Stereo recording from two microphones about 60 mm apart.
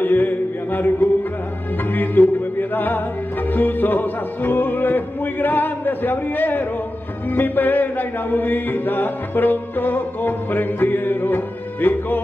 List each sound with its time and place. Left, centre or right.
0.0 s mantra: left
1.9 s speech: left
2.7 s music: left